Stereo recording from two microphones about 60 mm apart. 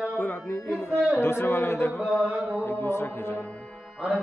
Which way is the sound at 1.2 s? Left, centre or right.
Left.